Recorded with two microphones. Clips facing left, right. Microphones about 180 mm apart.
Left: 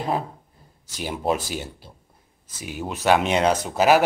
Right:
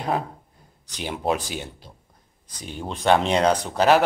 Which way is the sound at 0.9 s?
5° left (ahead or behind).